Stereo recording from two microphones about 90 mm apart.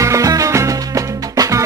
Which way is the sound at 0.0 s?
35° right (ahead or behind).